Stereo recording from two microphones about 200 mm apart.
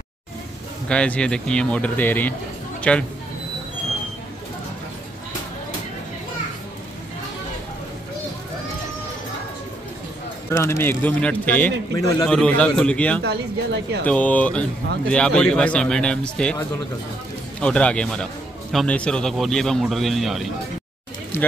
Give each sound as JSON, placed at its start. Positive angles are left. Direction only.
{"t": 0.8, "sound": "speech", "side_deg": 5}
{"t": 10.5, "sound": "a man's voice", "side_deg": 10}
{"t": 13.2, "sound": "speech", "side_deg": -55}
{"t": 14.0, "sound": "a man's voice", "side_deg": 5}
{"t": 17.6, "sound": "a man's voice", "side_deg": 5}